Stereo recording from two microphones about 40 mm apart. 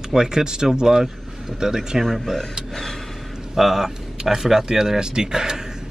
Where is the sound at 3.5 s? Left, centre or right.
Centre.